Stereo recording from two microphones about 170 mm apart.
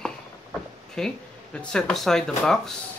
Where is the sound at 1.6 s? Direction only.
5° left (ahead or behind).